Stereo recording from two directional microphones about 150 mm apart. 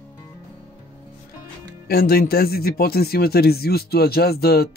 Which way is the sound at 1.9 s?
90° left.